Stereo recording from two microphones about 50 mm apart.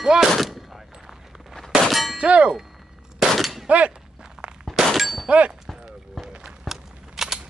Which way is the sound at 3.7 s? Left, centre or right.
Right.